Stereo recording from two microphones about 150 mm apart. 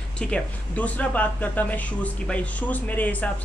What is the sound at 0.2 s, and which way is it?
A woman's voice, 10° left (ahead or behind).